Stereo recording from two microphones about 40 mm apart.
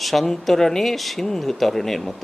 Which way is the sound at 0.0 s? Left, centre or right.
Centre.